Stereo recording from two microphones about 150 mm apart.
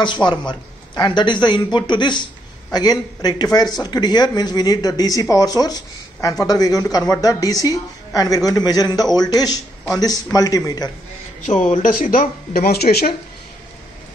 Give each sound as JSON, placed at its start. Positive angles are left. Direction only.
{"t": 0.0, "sound": "speech", "side_deg": 30}
{"t": 11.4, "sound": "speech", "side_deg": 55}